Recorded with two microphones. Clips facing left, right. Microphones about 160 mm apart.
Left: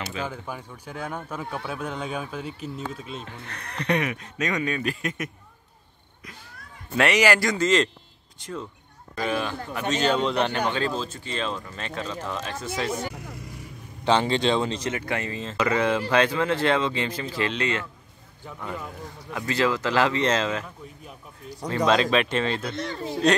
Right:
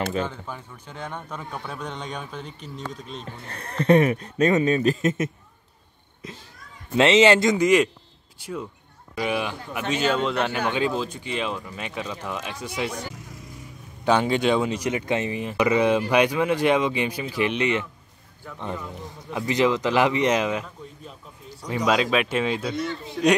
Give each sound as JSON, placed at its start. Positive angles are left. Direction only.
{"t": 0.2, "sound": "speech", "side_deg": 10}
{"t": 3.3, "sound": "a man's voice", "side_deg": -30}
{"t": 7.0, "sound": "a man's voice", "side_deg": -25}
{"t": 14.0, "sound": "speech", "side_deg": -10}
{"t": 19.3, "sound": "speech", "side_deg": -20}
{"t": 21.6, "sound": "speech", "side_deg": -10}